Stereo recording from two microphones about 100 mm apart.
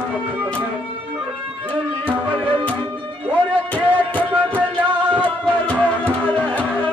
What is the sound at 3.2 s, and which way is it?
Music, 15° left (ahead or behind).